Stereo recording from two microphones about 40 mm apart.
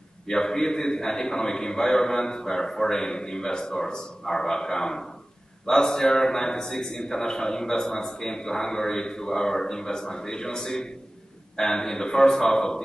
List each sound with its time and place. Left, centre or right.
0.3 s a man's voice: centre